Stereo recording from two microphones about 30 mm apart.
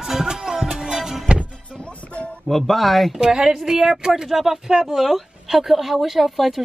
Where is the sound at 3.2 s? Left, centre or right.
Right; by 4.6 s centre.